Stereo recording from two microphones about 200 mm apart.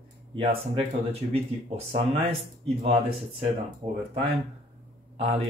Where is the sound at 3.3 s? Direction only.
30° right (ahead or behind).